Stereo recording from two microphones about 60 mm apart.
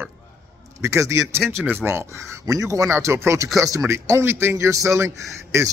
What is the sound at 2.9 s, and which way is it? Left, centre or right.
Speech, right.